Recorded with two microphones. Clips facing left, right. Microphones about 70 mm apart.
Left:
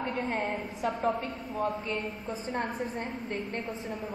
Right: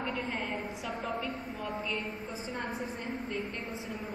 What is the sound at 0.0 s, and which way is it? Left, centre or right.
A woman's voice, left.